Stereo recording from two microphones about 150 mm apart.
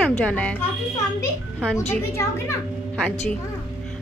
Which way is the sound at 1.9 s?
15° left (ahead or behind).